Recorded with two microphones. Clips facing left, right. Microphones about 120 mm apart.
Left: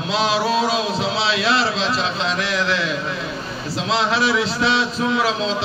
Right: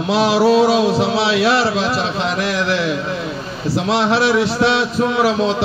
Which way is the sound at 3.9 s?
60° right (ahead or behind).